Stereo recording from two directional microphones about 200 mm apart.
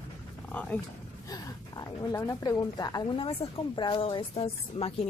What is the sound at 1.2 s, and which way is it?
Speech, 20° left (ahead or behind).